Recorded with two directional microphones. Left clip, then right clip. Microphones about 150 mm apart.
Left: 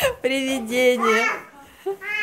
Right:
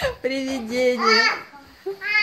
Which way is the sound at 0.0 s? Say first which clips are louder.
Left 3 dB; 10° left (ahead or behind).